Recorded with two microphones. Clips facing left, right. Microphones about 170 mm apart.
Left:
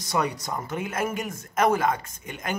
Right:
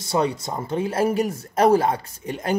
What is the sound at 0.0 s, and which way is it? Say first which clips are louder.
Speech: right 4 dB; 30° right (ahead or behind).